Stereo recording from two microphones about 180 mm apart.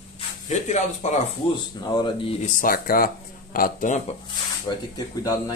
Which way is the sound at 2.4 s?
50° left (ahead or behind).